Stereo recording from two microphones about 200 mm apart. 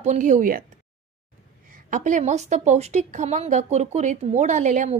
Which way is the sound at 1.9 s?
40° right (ahead or behind).